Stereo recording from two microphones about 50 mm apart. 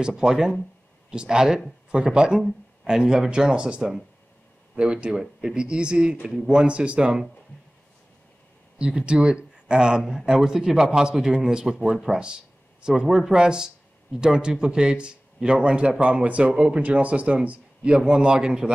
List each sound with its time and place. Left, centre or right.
0.0 s speech: centre
8.7 s speech: centre
16.5 s speech: centre
16.8 s speech: right